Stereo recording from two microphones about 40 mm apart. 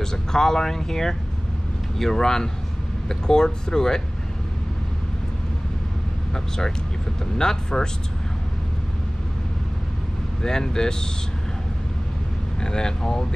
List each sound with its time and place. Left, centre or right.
0.0 s speech: centre
6.3 s speech: centre
10.4 s speech: centre
12.5 s speech: centre